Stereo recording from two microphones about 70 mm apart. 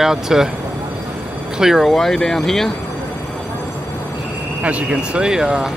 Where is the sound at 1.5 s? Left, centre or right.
Centre.